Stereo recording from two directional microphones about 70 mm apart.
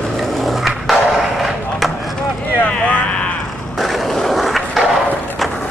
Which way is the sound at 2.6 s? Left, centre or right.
Centre.